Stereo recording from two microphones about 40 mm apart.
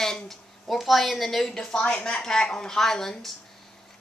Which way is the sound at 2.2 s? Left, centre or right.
Centre.